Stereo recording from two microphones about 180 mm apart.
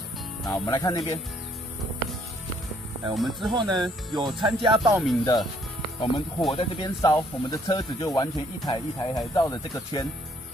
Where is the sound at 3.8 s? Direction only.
25° right (ahead or behind).